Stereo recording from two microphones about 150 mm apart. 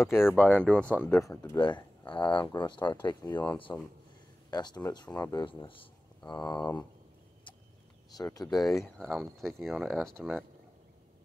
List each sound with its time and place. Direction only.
0.2 s speech: 10° left (ahead or behind); by 3.3 s 30° left (ahead or behind)
3.3 s speech: 10° left (ahead or behind)
4.5 s speech: 30° left (ahead or behind)
8.1 s speech: 25° left (ahead or behind)
8.5 s speech: centre (ahead or behind)